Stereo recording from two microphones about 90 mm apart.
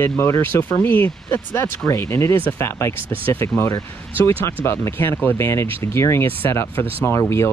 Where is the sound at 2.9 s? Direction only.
90° right.